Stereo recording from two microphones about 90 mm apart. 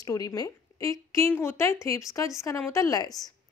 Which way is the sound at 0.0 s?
40° left (ahead or behind).